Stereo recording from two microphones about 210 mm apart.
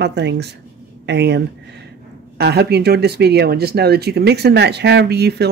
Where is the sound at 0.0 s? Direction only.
55° right (ahead or behind).